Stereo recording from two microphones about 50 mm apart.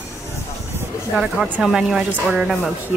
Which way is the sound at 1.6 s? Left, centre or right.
Centre.